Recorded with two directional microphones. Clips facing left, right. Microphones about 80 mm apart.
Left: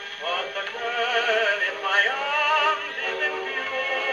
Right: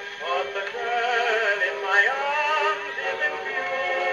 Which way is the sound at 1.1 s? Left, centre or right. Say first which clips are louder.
Left 2 dB; right.